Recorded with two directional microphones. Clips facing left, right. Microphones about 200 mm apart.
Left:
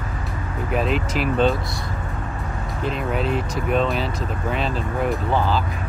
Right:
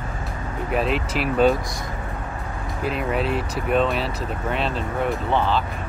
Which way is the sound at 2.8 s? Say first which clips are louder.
Even; 5° right (ahead or behind).